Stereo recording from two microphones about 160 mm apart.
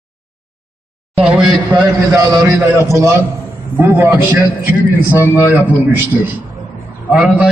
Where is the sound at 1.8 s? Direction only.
20° right (ahead or behind).